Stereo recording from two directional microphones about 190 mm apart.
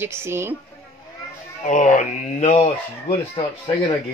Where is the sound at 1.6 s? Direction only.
40° left (ahead or behind).